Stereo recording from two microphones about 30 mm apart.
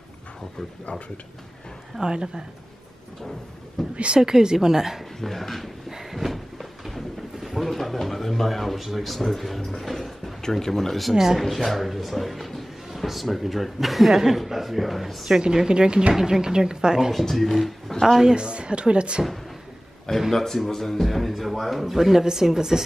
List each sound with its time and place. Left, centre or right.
0.8 s speech: left
2.0 s speech: right
3.9 s speech: right
4.2 s speech: right
5.2 s speech: centre
5.9 s cupboard open or close: centre
6.1 s a sound: centre
7.6 s speech: centre
15.4 s speech: right
17.1 s speech: centre
18.3 s a woman's voice: right
20.2 s speech: centre